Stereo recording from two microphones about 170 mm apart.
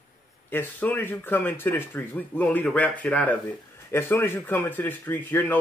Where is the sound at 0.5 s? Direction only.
10° left (ahead or behind).